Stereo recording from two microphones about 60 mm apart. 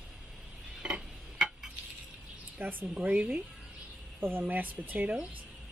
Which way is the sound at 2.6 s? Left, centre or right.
Right.